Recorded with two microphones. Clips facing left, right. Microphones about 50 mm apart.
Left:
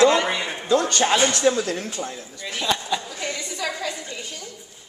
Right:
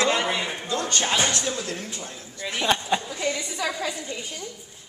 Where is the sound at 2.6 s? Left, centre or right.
Right.